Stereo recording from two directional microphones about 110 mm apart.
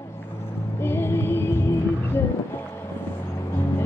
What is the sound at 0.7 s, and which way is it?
Music, 20° left (ahead or behind).